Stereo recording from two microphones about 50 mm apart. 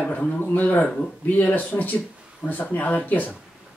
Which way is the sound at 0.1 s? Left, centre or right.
Left.